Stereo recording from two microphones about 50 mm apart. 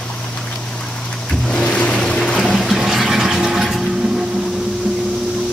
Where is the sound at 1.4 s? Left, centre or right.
Centre.